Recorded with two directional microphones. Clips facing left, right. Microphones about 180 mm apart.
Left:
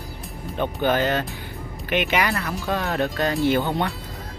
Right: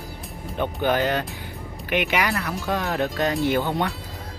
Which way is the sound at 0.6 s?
10° right (ahead or behind).